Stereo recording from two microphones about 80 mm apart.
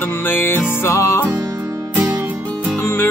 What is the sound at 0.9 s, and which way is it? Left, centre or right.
Music, left.